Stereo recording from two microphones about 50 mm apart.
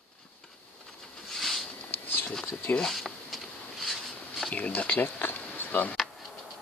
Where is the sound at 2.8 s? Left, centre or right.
Centre.